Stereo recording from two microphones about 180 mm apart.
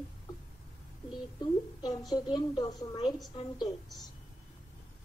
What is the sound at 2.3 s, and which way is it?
Speech, 20° left (ahead or behind).